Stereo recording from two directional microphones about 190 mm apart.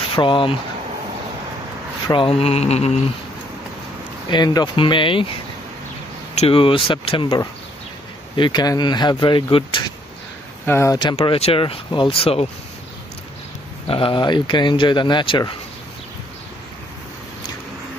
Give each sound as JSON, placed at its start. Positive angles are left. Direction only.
{"t": 0.1, "sound": "speech", "side_deg": 25}
{"t": 2.0, "sound": "mantra", "side_deg": 30}
{"t": 4.3, "sound": "speech", "side_deg": 25}
{"t": 6.3, "sound": "speech", "side_deg": 30}
{"t": 10.6, "sound": "speech", "side_deg": 15}
{"t": 13.8, "sound": "speech", "side_deg": 30}